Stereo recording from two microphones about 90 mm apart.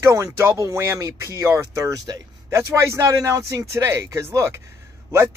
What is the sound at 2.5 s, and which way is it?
Speech, 30° right (ahead or behind).